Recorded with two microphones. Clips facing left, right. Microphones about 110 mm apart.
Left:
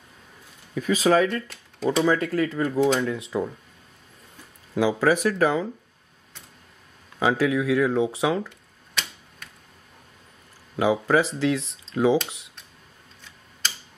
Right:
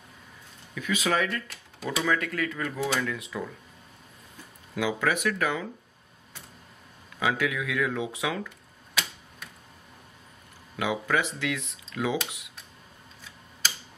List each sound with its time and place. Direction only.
0.7 s speech: 35° left (ahead or behind)
4.7 s speech: 35° left (ahead or behind)
7.2 s speech: 30° left (ahead or behind)
10.8 s speech: 30° left (ahead or behind)
13.2 s tick-tock: 5° right (ahead or behind)